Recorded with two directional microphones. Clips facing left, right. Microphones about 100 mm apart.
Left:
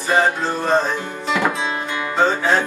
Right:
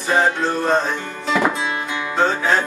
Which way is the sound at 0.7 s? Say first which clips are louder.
Left 1 dB; centre (ahead or behind).